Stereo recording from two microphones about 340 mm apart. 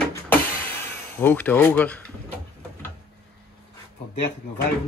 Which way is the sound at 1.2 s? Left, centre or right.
Centre.